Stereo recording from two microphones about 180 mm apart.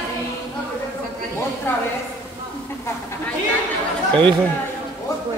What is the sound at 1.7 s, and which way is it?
Speech, 15° left (ahead or behind).